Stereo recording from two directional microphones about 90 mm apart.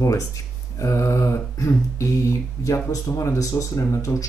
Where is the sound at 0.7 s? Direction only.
35° left (ahead or behind).